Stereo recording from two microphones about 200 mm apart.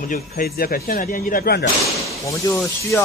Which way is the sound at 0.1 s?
50° left (ahead or behind).